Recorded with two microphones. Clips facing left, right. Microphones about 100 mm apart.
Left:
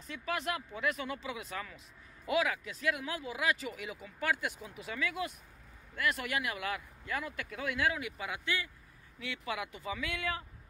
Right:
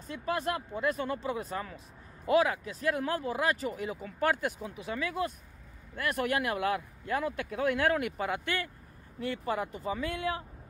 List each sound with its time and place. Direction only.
0.2 s speech: 35° right (ahead or behind)
5.9 s speech: 50° right (ahead or behind)